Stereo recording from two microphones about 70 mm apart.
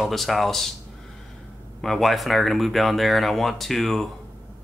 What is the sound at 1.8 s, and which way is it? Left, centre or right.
Speech, centre.